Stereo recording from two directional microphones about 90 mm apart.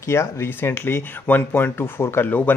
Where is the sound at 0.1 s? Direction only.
30° left (ahead or behind).